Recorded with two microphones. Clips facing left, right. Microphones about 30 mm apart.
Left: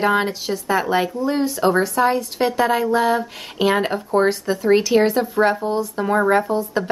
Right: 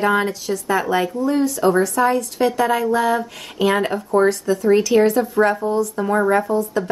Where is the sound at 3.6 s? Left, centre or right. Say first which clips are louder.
Even; left.